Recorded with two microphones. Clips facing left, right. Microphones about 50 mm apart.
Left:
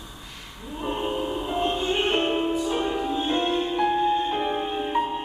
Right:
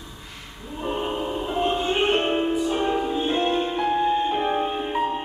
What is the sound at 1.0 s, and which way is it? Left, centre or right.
Music, centre.